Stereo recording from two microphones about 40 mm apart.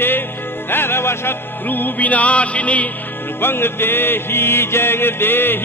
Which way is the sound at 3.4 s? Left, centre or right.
Left.